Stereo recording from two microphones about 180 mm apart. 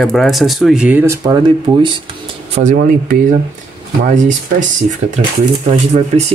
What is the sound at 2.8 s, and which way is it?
Speech, 55° right (ahead or behind).